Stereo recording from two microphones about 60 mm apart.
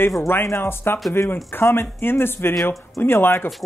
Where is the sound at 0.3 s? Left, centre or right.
Left.